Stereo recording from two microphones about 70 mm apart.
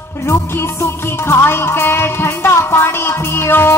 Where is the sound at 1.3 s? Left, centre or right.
Left.